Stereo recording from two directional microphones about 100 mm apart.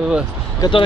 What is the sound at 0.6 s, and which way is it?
Speech, 40° left (ahead or behind).